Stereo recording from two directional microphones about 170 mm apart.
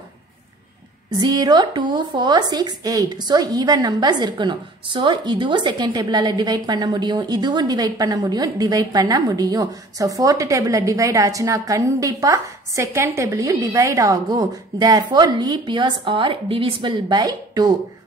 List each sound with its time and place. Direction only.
1.2 s speech: 25° right (ahead or behind)